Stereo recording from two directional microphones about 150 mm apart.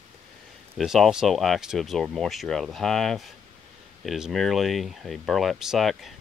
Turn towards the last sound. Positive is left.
turn(degrees=0)  # may be behind; listen again after turning